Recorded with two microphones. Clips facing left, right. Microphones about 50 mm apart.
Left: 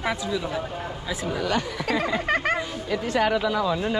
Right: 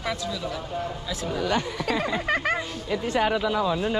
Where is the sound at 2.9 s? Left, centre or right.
Left.